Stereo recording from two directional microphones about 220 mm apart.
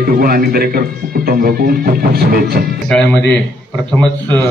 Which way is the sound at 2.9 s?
5° left (ahead or behind).